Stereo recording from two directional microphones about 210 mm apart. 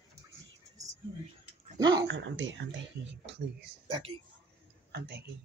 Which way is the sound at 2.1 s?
60° right (ahead or behind).